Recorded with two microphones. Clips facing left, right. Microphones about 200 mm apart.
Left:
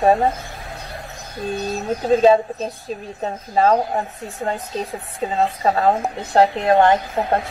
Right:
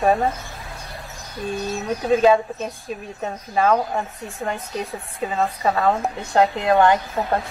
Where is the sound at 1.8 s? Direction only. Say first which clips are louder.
Left 2 dB; 30° left (ahead or behind).